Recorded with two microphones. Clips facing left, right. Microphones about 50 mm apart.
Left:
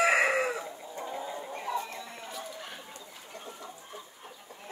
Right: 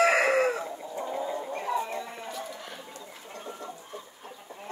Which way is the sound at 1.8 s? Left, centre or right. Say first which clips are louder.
Right 6 dB; right.